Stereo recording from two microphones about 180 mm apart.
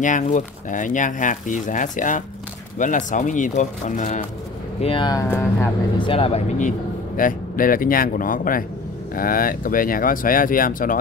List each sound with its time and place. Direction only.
0.0 s speech: 45° left (ahead or behind)
4.8 s speech: 25° left (ahead or behind)
5.3 s speech: 10° left (ahead or behind)
5.9 s speech: 30° left (ahead or behind)
7.2 s speech: 50° left (ahead or behind)